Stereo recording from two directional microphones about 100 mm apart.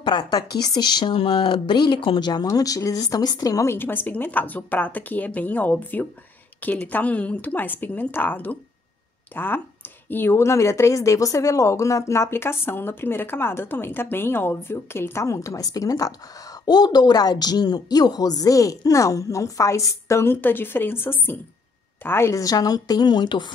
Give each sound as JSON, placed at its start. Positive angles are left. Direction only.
{"t": 0.0, "sound": "speech", "side_deg": 45}
{"t": 2.4, "sound": "a woman's voice", "side_deg": 35}
{"t": 3.7, "sound": "a woman's voice", "side_deg": 20}